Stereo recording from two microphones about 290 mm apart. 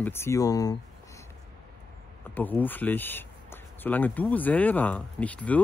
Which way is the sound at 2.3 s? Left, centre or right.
Centre.